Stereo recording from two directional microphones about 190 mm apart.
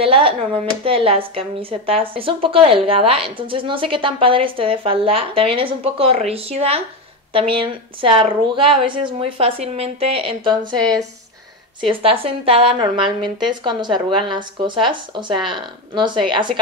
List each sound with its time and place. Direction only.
0.0 s a sound: 30° right (ahead or behind)
0.8 s a woman's voice: 30° right (ahead or behind)
11.8 s a woman's voice: 30° right (ahead or behind)